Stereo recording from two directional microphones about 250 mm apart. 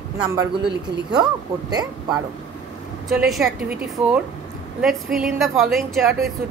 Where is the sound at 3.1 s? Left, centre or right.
Centre.